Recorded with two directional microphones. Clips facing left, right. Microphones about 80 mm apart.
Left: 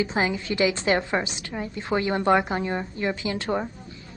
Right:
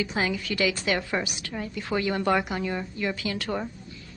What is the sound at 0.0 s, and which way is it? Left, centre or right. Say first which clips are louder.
A woman's voice: left 3 dB; left.